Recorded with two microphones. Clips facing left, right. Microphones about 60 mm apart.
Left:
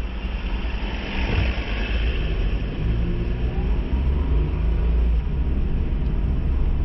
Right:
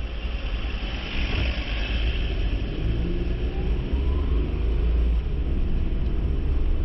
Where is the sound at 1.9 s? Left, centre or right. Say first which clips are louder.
Left 3 dB; centre.